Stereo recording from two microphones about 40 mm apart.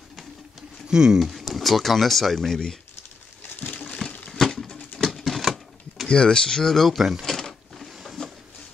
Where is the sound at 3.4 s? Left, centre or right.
Left.